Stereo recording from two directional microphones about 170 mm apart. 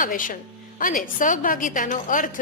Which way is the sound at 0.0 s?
55° left (ahead or behind).